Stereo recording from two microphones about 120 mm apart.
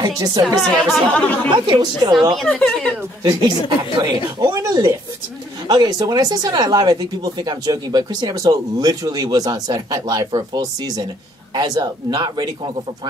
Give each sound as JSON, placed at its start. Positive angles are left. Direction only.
{"t": 0.2, "sound": "speech", "side_deg": -30}
{"t": 0.6, "sound": "speech", "side_deg": 0}
{"t": 1.1, "sound": "speech", "side_deg": 15}
{"t": 1.5, "sound": "speech", "side_deg": -40}
{"t": 2.4, "sound": "speech", "side_deg": 10}
{"t": 3.3, "sound": "speech", "side_deg": -35}